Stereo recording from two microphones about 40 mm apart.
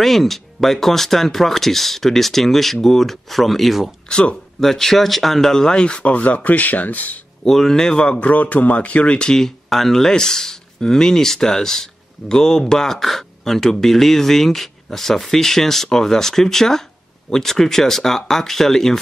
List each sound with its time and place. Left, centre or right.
0.0 s speech: centre
4.1 s speech: left
4.6 s speech: centre; by 7.2 s left
7.4 s speech: centre
8.0 s a man's voice: left
9.7 s speech: centre